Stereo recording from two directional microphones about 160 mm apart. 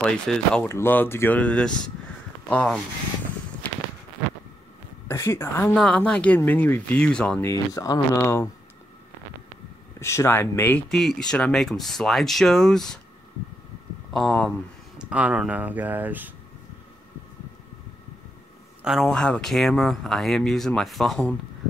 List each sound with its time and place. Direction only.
0.0 s speech: 5° left (ahead or behind)
5.0 s speech: 15° left (ahead or behind)
7.4 s speech: 20° left (ahead or behind)
9.9 s speech: 15° left (ahead or behind)
14.1 s speech: 5° left (ahead or behind)
15.0 s speech: 5° right (ahead or behind)
18.9 s speech: centre (ahead or behind)